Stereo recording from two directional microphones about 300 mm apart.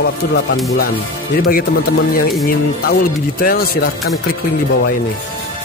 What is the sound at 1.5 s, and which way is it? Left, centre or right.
Speech, left.